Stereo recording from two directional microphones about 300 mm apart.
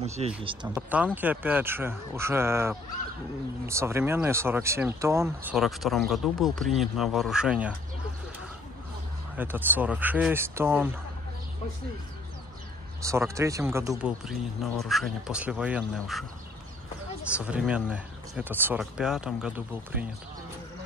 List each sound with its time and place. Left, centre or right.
0.0 s speech: right
0.7 s speech: centre
9.4 s speech: centre
13.0 s speech: centre
17.3 s speech: centre